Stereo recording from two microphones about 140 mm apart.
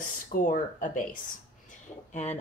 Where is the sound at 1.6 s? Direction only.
55° left (ahead or behind).